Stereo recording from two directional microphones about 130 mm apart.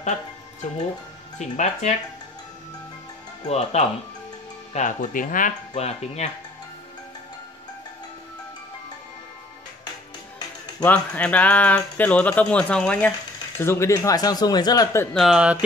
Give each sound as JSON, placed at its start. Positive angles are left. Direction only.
{"t": 1.4, "sound": "speech", "side_deg": 60}
{"t": 3.4, "sound": "speech", "side_deg": 60}
{"t": 4.7, "sound": "speech", "side_deg": 75}
{"t": 5.8, "sound": "speech", "side_deg": 55}
{"t": 10.8, "sound": "speech", "side_deg": 10}
{"t": 13.6, "sound": "speech", "side_deg": 20}
{"t": 15.1, "sound": "speech", "side_deg": -5}